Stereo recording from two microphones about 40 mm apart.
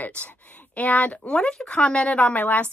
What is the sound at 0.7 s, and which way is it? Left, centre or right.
Speech, left.